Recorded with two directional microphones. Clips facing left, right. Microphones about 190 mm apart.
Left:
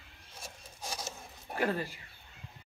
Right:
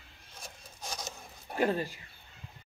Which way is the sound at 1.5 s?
20° right (ahead or behind).